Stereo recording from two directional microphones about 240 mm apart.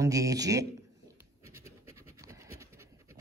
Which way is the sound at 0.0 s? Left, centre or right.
Centre.